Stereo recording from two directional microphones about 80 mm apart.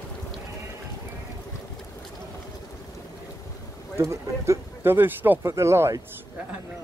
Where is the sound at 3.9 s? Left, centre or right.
Right.